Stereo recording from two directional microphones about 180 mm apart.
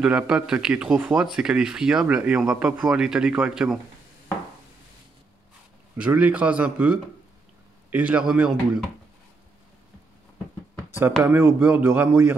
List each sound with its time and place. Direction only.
0.0 s speech: 5° right (ahead or behind)
5.9 s speech: 5° right (ahead or behind)
11.2 s speech: 10° right (ahead or behind)